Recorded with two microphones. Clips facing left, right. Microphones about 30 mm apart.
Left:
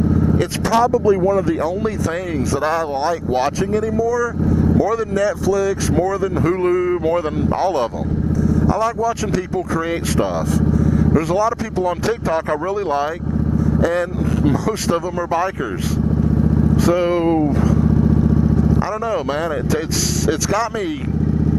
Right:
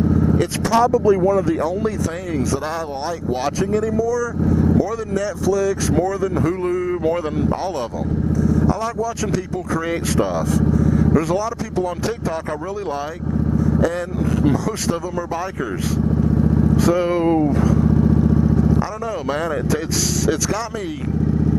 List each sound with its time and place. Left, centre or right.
1.0 s speech: centre
8.7 s speech: centre
14.9 s speech: centre
16.8 s speech: centre
18.9 s speech: centre